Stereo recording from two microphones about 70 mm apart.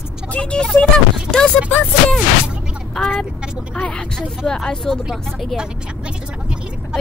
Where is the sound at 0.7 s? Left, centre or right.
Centre.